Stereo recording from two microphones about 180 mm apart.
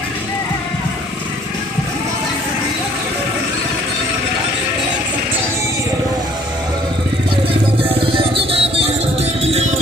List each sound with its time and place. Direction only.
8.0 s music: 30° right (ahead or behind)